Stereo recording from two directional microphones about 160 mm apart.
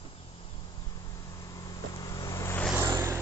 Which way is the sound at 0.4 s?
30° left (ahead or behind).